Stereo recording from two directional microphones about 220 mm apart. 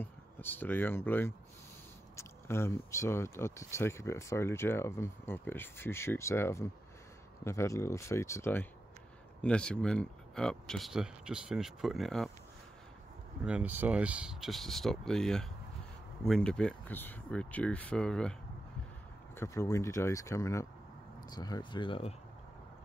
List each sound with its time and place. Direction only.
0.0 s speech: 10° left (ahead or behind)
13.5 s speech: 5° right (ahead or behind)
19.3 s speech: 15° left (ahead or behind)